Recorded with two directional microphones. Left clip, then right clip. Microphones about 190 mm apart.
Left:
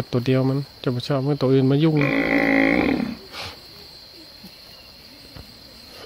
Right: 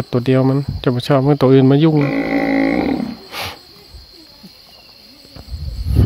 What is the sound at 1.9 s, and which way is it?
Livestock, 30° right (ahead or behind).